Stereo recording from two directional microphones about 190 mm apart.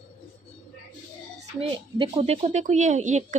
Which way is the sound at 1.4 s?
30° right (ahead or behind).